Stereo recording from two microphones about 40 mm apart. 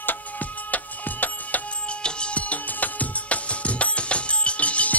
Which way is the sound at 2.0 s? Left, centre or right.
Left.